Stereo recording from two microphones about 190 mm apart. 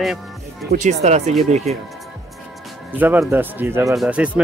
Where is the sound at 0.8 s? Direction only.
35° right (ahead or behind).